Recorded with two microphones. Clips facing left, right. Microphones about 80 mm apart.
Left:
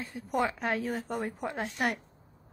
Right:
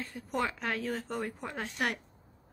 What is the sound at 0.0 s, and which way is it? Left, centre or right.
A woman's voice, centre.